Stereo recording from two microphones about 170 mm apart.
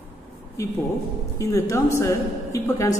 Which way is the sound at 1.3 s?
15° left (ahead or behind).